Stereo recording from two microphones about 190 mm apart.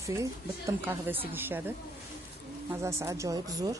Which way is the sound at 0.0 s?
15° right (ahead or behind).